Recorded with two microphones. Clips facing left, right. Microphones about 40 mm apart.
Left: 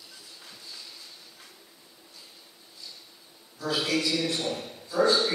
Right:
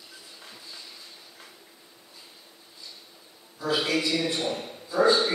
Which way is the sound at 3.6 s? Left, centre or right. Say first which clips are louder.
Right 2 dB; centre.